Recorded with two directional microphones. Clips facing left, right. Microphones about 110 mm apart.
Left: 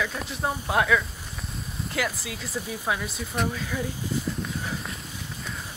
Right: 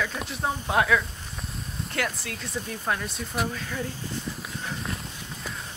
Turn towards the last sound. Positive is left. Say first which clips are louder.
# left 1 dB
turn(degrees=5)  # may be behind; listen again after turning